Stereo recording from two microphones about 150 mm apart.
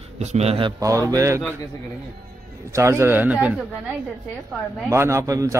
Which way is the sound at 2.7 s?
20° right (ahead or behind).